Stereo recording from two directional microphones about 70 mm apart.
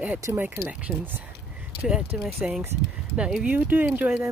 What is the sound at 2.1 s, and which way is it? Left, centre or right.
Speech, centre.